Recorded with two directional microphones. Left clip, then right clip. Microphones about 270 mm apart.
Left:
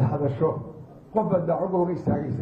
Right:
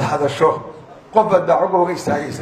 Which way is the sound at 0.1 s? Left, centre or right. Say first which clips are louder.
Right 11 dB; centre.